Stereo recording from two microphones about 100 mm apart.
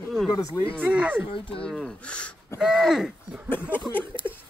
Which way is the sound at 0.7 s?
15° right (ahead or behind).